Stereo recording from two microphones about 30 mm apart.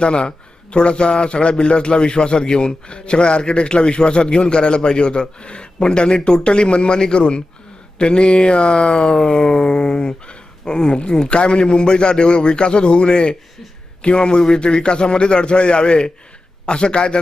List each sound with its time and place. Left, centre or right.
0.0 s a man's voice: left